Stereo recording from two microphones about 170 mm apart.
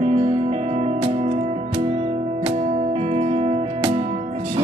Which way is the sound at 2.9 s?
40° right (ahead or behind).